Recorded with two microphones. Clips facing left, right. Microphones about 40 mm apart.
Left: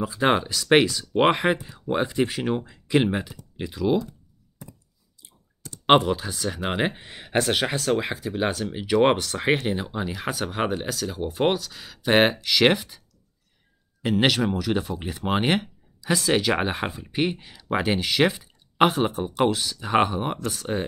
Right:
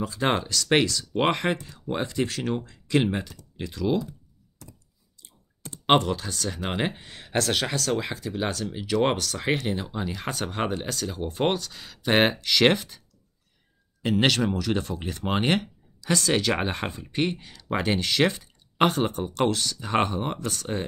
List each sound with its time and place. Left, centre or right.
0.0 s speech: centre
4.6 s a sound: centre
5.9 s speech: centre
14.0 s speech: centre